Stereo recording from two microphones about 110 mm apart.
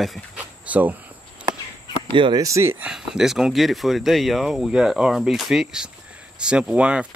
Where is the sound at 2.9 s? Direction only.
5° right (ahead or behind).